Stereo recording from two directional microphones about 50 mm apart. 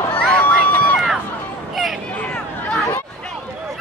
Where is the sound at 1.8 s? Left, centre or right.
Centre.